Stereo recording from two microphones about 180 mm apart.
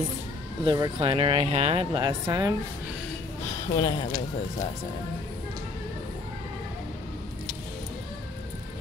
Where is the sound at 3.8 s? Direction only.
30° left (ahead or behind).